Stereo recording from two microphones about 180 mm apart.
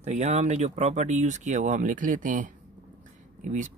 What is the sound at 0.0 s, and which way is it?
Speech, 40° right (ahead or behind).